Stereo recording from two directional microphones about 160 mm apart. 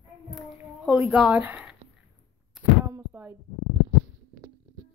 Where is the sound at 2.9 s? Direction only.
15° right (ahead or behind).